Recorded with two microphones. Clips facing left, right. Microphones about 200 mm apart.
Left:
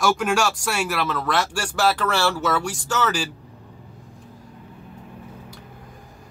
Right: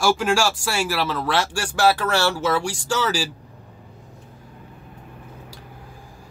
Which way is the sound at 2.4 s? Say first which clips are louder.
Right 1 dB; 30° right (ahead or behind).